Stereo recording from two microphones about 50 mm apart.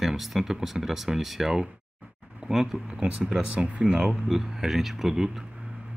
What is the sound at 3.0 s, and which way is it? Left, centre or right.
Speech, centre.